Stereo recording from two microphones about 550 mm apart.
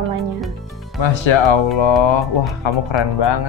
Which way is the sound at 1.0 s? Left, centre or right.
Left.